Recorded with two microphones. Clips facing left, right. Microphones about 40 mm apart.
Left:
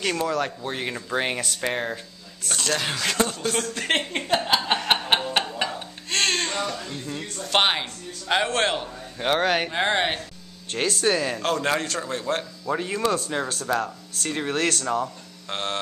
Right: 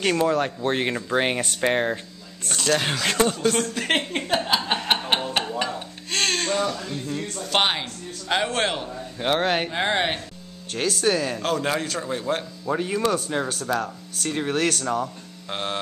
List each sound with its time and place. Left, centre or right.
0.6 s speech: right
0.9 s speech: centre
2.5 s a man's voice: centre
2.8 s speech: centre
3.3 s a man's voice: centre
5.6 s a sound: centre
7.4 s a man's voice: centre
11.4 s a man's voice: centre